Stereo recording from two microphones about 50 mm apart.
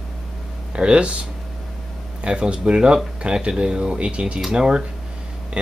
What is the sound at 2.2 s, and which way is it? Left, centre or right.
Speech, right.